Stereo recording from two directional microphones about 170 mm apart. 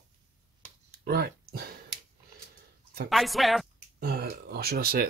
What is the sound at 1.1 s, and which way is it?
Speech, 65° right (ahead or behind).